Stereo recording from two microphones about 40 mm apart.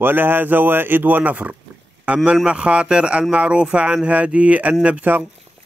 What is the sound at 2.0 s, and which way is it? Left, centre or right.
A man's voice, right.